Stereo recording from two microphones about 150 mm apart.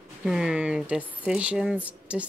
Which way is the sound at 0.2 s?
5° right (ahead or behind).